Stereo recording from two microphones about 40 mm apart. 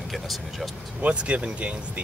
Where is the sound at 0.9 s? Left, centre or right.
Right.